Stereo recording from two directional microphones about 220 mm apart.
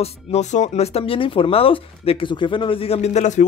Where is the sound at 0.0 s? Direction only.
30° left (ahead or behind).